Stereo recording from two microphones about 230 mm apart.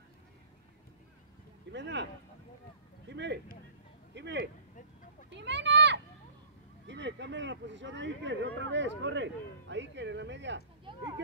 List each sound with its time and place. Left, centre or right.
1.7 s speech: right
3.1 s speech: right
5.3 s a sound: right
6.9 s speech: right